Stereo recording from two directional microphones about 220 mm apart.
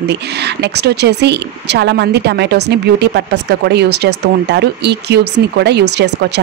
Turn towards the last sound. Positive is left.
turn(degrees=-50)  # may be behind; listen again after turning